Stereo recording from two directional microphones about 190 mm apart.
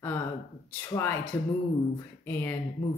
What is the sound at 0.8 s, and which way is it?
Speech, 15° left (ahead or behind).